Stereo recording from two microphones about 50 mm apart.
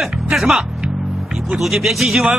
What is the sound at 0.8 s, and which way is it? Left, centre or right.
Music, centre.